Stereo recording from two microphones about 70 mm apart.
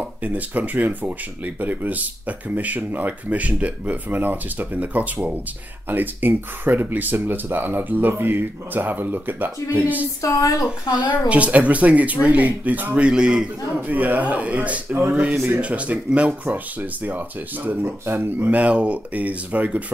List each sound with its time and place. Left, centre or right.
0.2 s speech: right
10.2 s a woman's voice: left
11.2 s speech: centre
13.9 s speech: right
18.6 s speech: centre